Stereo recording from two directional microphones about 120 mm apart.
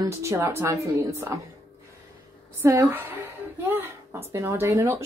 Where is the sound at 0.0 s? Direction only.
25° right (ahead or behind).